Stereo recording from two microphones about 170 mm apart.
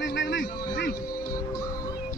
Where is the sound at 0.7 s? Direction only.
65° left (ahead or behind).